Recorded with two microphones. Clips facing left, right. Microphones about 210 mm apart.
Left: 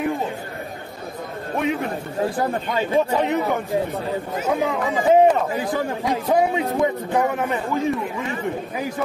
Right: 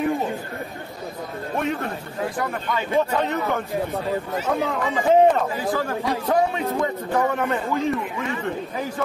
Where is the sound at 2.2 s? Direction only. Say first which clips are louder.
Left 3 dB; 30° left (ahead or behind).